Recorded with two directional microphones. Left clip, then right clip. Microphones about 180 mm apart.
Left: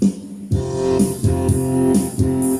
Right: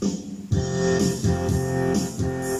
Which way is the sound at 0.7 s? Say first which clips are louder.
Left 4 dB; 30° left (ahead or behind).